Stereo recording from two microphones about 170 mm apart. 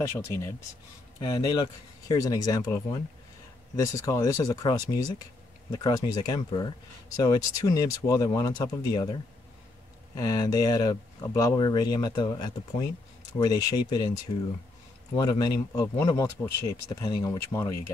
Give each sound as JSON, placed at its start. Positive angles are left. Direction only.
{"t": 0.2, "sound": "speech", "side_deg": 15}
{"t": 10.1, "sound": "speech", "side_deg": 25}